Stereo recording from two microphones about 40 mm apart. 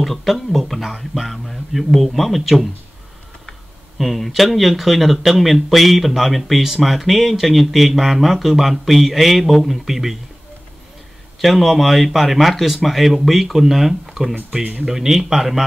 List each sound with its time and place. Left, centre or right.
0.0 s speech: centre
4.0 s speech: centre
11.4 s speech: centre
14.5 s speech: right
14.9 s speech: centre